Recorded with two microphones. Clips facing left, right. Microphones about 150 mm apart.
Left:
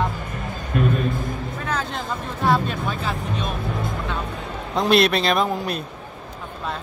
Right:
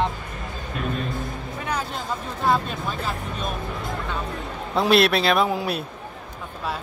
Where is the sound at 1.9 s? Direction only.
Centre (ahead or behind).